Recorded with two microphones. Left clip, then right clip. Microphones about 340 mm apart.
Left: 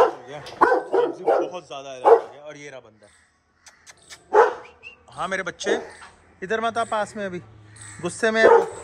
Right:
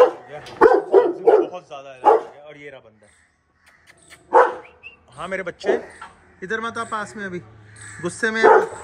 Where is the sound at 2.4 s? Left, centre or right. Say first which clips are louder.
Left 1 dB; left.